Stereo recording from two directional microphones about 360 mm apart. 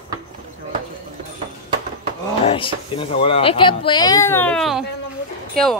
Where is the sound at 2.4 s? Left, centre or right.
Centre.